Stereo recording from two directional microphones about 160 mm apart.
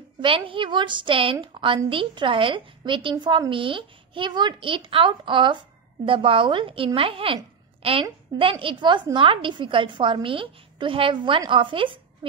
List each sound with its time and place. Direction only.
0.2 s a woman's voice: 30° right (ahead or behind)